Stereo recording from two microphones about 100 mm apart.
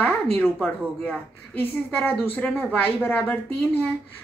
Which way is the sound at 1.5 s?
20° left (ahead or behind).